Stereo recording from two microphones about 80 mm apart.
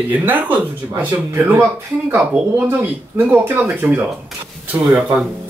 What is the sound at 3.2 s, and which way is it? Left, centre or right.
Speech, right.